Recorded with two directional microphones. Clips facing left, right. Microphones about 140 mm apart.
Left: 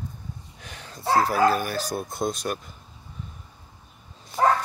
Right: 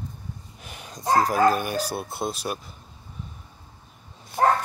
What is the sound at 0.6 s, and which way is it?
Dog, 10° right (ahead or behind).